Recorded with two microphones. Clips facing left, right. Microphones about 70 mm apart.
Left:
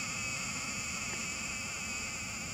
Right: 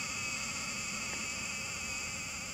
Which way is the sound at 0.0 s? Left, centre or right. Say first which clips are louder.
Left 1 dB; centre.